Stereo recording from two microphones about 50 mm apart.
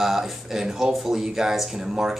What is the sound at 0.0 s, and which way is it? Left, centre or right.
A man's voice, centre.